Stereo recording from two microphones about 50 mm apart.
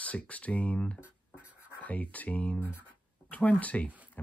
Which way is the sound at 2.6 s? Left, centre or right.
Left.